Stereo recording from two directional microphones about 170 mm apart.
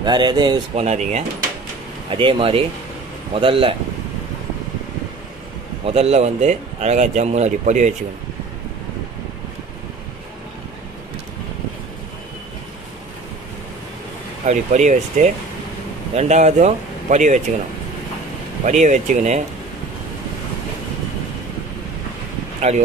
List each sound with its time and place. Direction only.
0.0 s speech: 25° right (ahead or behind)
0.7 s speech: 40° right (ahead or behind)
2.0 s speech: 30° right (ahead or behind)
5.9 s speech: 40° right (ahead or behind)
14.4 s speech: 45° right (ahead or behind)
18.7 s speech: 45° right (ahead or behind)
22.6 s speech: 40° right (ahead or behind)